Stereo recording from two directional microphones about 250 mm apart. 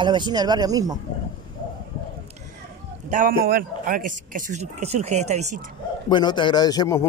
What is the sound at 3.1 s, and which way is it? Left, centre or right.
Speech, right.